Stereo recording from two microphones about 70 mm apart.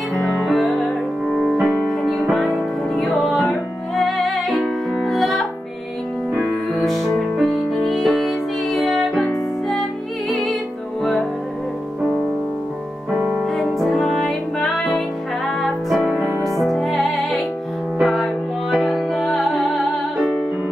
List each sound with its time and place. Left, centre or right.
0.3 s music: centre
6.8 s music: centre
10.3 s music: centre
13.4 s music: centre